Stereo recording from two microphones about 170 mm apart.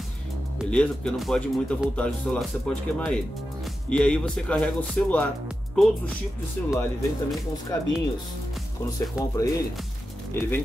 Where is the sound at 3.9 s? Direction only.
5° left (ahead or behind).